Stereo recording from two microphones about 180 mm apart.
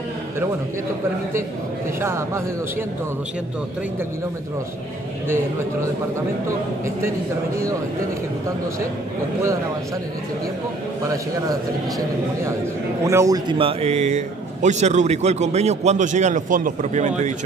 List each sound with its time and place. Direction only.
2.0 s speech: 15° right (ahead or behind)
13.0 s a man's voice: 15° right (ahead or behind); by 17.1 s 45° right (ahead or behind)